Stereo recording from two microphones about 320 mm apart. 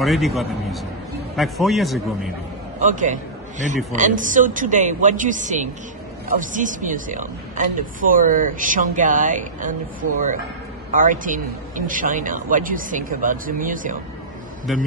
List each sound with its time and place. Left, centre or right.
0.0 s a man's voice: centre
2.9 s a man's voice: right
11.0 s a man's voice: right
14.7 s a man's voice: centre